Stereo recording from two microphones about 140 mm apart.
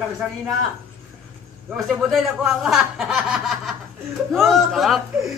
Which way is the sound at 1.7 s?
5° right (ahead or behind).